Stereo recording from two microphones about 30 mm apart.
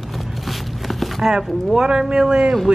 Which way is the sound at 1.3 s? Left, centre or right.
Centre.